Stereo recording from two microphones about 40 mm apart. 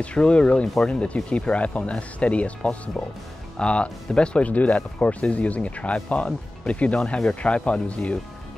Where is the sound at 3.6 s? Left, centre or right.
Left.